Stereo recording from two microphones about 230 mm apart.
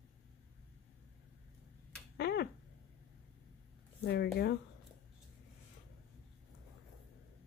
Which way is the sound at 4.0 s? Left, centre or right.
Left.